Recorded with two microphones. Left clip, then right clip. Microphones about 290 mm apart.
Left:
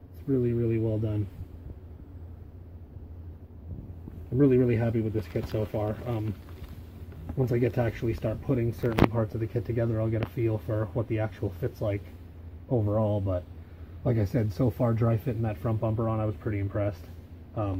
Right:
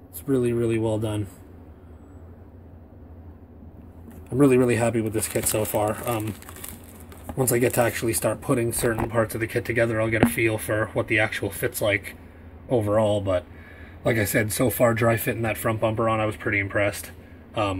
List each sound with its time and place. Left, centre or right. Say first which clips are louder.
0.3 s speech: right 5 dB; centre
4.6 s speech: right 5 dB; centre
7.3 s a man's voice: right 6 dB; centre
13.0 s speech: right 7 dB; right
14.0 s speech: right 7 dB; centre